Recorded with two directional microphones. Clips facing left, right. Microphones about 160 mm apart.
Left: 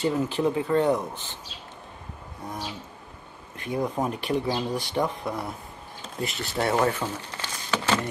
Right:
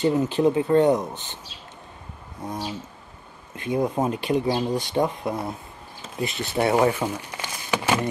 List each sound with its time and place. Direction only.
0.0 s speech: 20° right (ahead or behind)
2.4 s speech: 20° right (ahead or behind)